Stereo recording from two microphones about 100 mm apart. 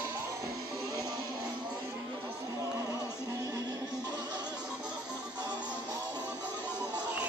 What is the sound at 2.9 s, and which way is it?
Music, 25° left (ahead or behind).